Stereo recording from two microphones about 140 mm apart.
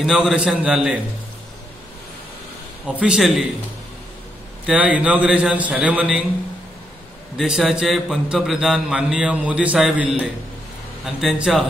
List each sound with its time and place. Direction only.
0.0 s mantra: 5° right (ahead or behind)
3.0 s mantra: 5° right (ahead or behind)
4.6 s a man's voice: 10° right (ahead or behind)
7.3 s mantra: 5° right (ahead or behind)
11.1 s mantra: 5° right (ahead or behind)